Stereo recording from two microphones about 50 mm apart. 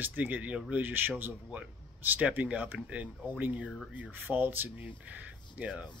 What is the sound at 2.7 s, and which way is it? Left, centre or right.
Speech, right.